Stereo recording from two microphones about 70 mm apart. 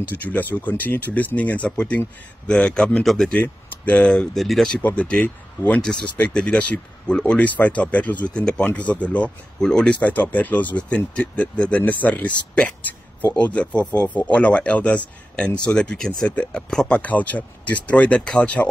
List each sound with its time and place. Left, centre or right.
0.1 s speech: left
3.0 s speech: centre
3.3 s speech: left
4.1 s speech: centre
4.8 s speech: centre
5.2 s speech: left